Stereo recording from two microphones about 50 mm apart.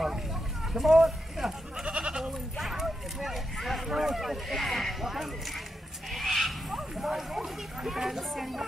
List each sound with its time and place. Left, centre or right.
0.7 s speech: centre
1.9 s goat: right
2.5 s speech: centre
6.1 s a sound: centre
6.8 s speech: centre